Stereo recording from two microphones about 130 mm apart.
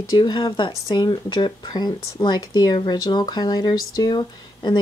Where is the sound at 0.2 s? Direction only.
35° left (ahead or behind).